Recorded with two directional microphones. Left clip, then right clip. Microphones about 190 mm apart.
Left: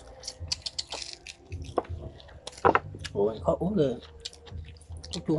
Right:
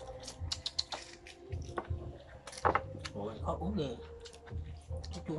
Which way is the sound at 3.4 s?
45° left (ahead or behind).